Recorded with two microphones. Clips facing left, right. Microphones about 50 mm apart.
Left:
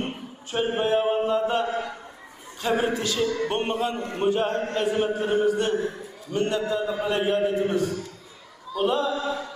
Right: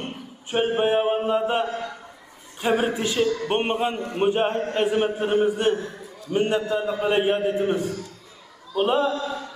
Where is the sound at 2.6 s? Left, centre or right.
Right.